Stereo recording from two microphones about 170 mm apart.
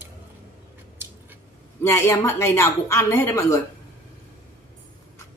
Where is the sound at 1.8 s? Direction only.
20° left (ahead or behind).